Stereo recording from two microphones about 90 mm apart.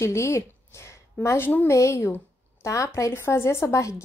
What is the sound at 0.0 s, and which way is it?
A woman's voice, 30° left (ahead or behind).